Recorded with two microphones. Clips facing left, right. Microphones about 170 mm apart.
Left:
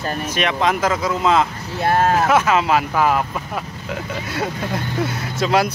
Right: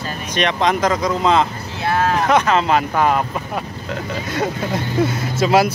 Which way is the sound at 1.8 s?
45° left (ahead or behind).